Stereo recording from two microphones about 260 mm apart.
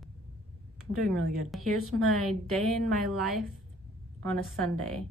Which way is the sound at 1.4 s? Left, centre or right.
Centre.